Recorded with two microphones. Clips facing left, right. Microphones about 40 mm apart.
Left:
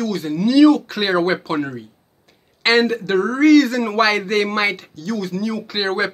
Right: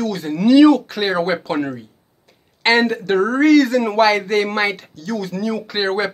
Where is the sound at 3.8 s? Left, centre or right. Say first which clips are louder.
Right 2 dB; centre.